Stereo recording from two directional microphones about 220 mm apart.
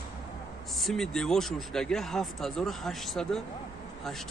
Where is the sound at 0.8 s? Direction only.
Centre (ahead or behind).